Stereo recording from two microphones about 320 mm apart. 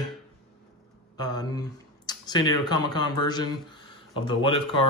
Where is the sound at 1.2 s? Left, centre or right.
Centre.